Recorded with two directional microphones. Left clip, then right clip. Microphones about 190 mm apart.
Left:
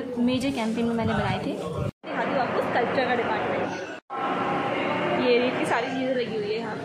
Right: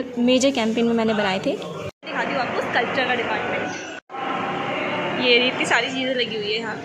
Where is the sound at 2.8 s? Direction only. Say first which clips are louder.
Right 4 dB; 5° left (ahead or behind).